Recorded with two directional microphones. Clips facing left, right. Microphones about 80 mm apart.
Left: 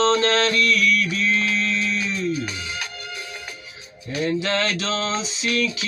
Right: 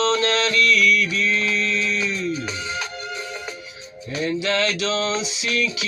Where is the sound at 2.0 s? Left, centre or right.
Right.